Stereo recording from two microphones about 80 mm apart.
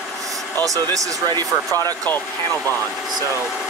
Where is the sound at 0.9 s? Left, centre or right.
Right.